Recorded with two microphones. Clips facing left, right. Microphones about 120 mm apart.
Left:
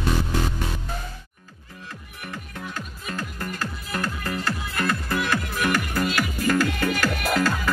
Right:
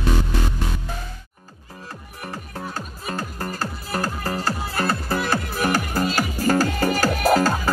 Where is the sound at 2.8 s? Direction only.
35° right (ahead or behind).